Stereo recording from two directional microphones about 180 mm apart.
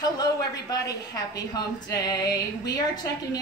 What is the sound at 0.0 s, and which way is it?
A woman's voice, 20° left (ahead or behind).